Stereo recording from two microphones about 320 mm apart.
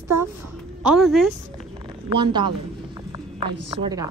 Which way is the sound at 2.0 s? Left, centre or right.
Centre.